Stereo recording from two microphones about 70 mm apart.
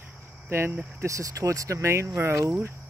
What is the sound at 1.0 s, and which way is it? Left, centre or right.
Speech, right.